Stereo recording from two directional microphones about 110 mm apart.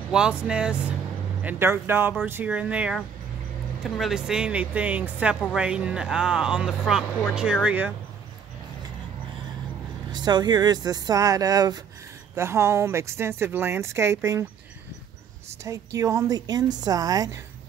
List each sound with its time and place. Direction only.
0.1 s a woman's voice: 10° right (ahead or behind)
10.1 s a woman's voice: 40° right (ahead or behind)
12.4 s a woman's voice: 25° right (ahead or behind)
15.6 s a woman's voice: 30° right (ahead or behind)